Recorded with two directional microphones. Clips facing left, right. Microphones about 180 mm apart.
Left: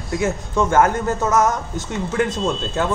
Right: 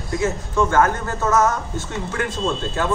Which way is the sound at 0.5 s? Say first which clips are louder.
Left 2 dB; 20° left (ahead or behind).